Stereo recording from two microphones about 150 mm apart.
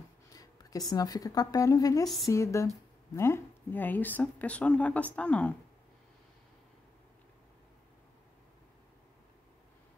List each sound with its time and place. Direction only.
0.3 s a woman's voice: 25° left (ahead or behind); by 5.6 s 10° left (ahead or behind)